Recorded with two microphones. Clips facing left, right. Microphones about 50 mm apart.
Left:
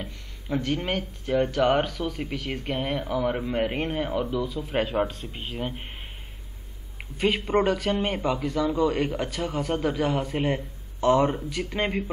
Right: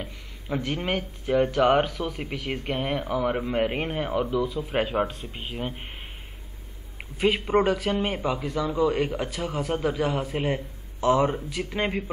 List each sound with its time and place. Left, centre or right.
0.0 s speech: centre
7.2 s speech: centre